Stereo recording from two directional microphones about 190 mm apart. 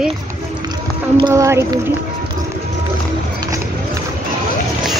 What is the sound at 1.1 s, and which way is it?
Speech, 20° right (ahead or behind).